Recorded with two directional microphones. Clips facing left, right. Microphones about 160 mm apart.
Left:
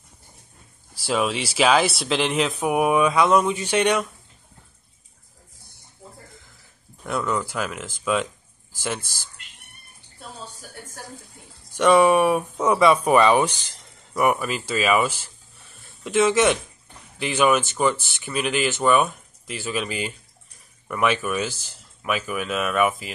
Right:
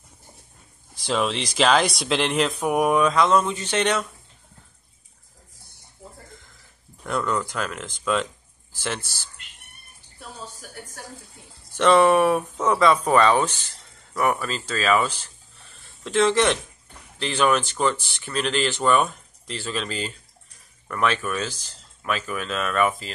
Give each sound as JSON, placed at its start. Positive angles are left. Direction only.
{"t": 0.9, "sound": "speech", "side_deg": 5}
{"t": 7.1, "sound": "speech", "side_deg": 5}
{"t": 11.7, "sound": "speech", "side_deg": 10}
{"t": 15.7, "sound": "a sound", "side_deg": 10}
{"t": 17.2, "sound": "speech", "side_deg": 10}